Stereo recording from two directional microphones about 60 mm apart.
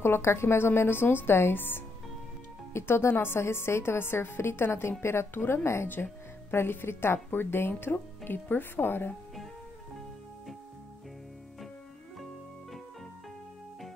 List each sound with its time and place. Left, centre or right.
0.0 s a woman's voice: left
5.9 s speech: left